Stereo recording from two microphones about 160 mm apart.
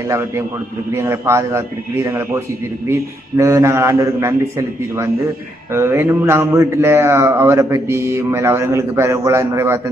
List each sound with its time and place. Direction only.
0.9 s speech: 15° right (ahead or behind)